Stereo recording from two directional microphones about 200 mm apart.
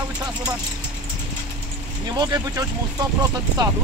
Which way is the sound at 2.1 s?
20° right (ahead or behind).